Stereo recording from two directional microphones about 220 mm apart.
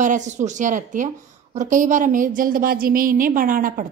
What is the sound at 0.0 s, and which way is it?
A woman's voice, 35° right (ahead or behind).